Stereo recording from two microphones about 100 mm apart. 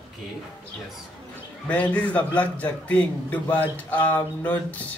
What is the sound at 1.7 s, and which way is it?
A man's voice, 15° left (ahead or behind).